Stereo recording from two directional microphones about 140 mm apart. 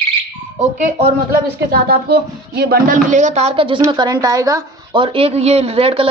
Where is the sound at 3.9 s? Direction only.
30° right (ahead or behind).